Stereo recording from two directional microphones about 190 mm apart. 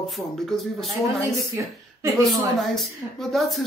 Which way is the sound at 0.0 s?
Centre (ahead or behind).